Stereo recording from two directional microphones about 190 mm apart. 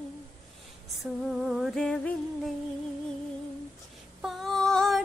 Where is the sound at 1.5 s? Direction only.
Centre (ahead or behind).